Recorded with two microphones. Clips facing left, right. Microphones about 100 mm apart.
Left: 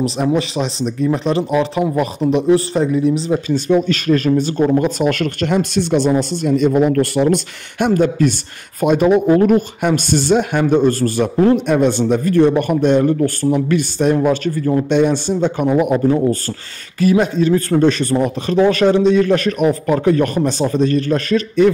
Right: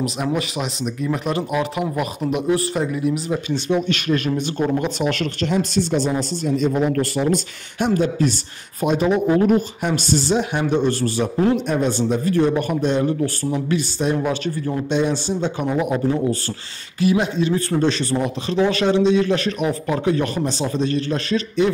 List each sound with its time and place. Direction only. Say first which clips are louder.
0.0 s speech: left 6 dB; 30° left (ahead or behind)
3.5 s speech: left 5 dB; 40° left (ahead or behind)
11.6 s speech: left 6 dB; 70° left (ahead or behind); by 16.3 s 55° left (ahead or behind)
17.0 s speech: left 5 dB; 45° left (ahead or behind)